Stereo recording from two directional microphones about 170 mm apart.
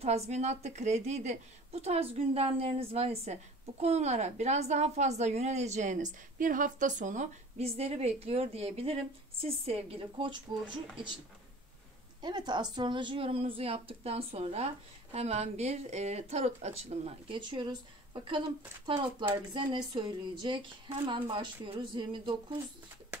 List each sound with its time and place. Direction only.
0.0 s a woman's voice: 40° right (ahead or behind)
12.2 s a woman's voice: 25° right (ahead or behind)